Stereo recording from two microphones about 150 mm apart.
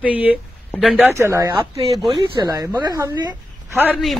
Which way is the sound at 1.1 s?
20° right (ahead or behind).